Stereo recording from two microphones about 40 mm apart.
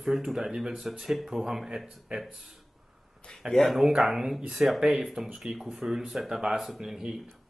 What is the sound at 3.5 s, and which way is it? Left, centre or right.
Speech, centre.